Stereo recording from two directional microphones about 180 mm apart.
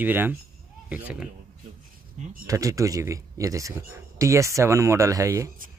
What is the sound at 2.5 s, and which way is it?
A man's voice, 20° right (ahead or behind).